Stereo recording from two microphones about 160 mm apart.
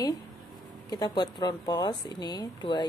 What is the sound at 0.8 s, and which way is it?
Speech, 25° left (ahead or behind).